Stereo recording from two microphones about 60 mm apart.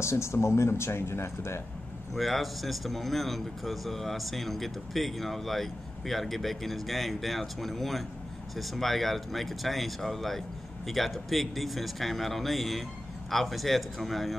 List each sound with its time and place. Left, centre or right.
0.0 s speech: left
2.1 s speech: centre